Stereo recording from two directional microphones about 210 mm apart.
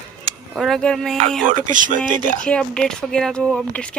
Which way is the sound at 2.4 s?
5° left (ahead or behind).